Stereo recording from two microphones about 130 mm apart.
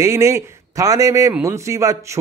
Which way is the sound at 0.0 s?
20° right (ahead or behind).